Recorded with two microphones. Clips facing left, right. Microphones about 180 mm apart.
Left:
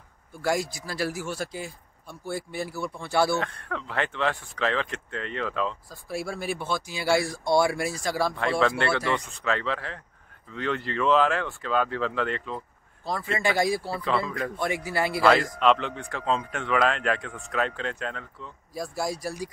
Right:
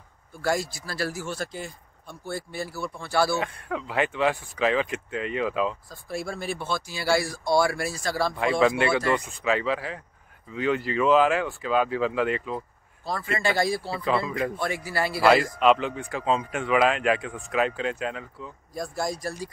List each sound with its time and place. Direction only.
0.4 s speech: 15° left (ahead or behind)
3.3 s speech: 10° right (ahead or behind)
5.9 s speech: 5° left (ahead or behind)
8.4 s speech: 10° right (ahead or behind)
13.4 s speech: 15° left (ahead or behind)
13.8 s speech: 10° right (ahead or behind)
14.6 s a man's voice: 20° left (ahead or behind)
15.2 s speech: 5° right (ahead or behind)
18.8 s speech: 5° left (ahead or behind)